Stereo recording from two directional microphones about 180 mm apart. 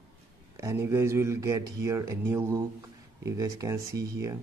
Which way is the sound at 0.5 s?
15° right (ahead or behind).